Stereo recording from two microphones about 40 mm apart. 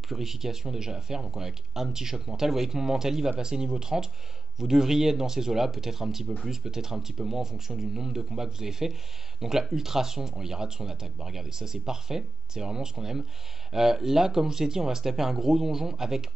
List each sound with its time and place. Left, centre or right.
0.1 s speech: centre